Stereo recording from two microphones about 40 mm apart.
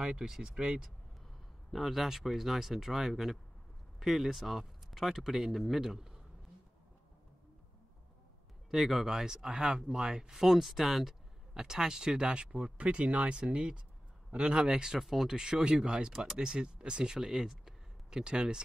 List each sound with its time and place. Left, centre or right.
0.4 s speech: right
1.7 s speech: centre
8.6 s speech: centre
10.3 s speech: centre
11.5 s speech: centre
14.9 s speech: centre
15.3 s speech: centre